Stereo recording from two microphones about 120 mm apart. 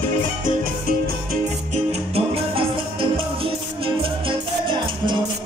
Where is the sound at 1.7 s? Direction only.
60° right (ahead or behind).